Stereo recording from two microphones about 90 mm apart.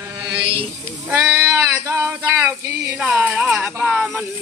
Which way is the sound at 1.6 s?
35° right (ahead or behind).